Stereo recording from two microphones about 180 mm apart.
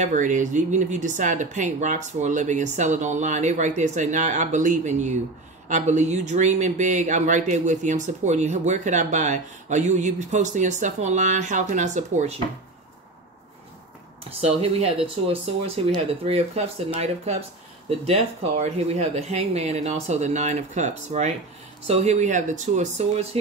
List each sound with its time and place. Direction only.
0.0 s speech: 45° right (ahead or behind)
14.4 s speech: 35° right (ahead or behind)